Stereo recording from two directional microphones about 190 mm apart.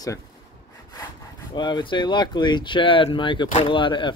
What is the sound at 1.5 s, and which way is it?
Speech, 25° left (ahead or behind).